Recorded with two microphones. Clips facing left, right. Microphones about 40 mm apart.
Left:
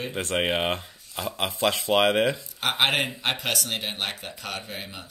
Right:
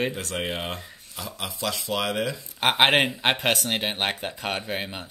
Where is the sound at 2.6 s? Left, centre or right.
Right.